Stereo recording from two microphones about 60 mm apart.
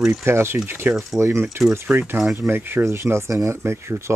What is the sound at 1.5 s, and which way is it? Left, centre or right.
Speech, right.